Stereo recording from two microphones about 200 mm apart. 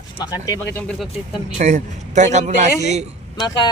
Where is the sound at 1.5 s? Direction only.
35° right (ahead or behind).